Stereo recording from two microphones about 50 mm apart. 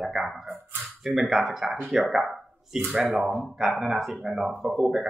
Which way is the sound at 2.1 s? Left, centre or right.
Centre.